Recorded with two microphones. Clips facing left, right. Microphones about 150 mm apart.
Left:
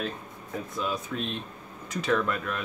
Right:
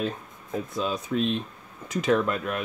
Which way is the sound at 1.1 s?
30° right (ahead or behind).